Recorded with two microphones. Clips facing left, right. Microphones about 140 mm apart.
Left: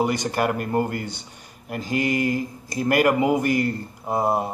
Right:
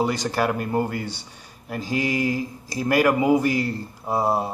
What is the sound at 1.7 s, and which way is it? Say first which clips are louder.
Speech: left 1 dB; 55° left (ahead or behind).